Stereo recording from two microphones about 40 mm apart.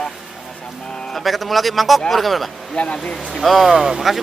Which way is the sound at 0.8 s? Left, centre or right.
Centre.